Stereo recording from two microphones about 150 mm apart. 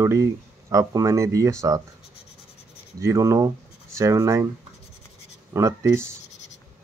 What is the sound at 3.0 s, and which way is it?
Speech, 20° right (ahead or behind).